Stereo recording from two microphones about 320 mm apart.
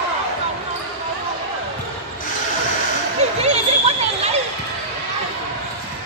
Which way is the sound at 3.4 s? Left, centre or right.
Centre.